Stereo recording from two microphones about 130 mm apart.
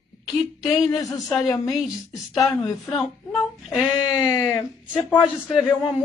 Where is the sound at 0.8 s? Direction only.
25° left (ahead or behind).